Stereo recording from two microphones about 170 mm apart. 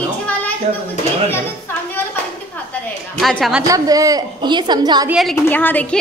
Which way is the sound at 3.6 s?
20° right (ahead or behind).